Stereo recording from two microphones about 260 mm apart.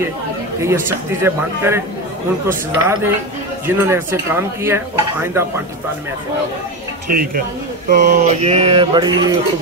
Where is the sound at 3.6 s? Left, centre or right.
Centre.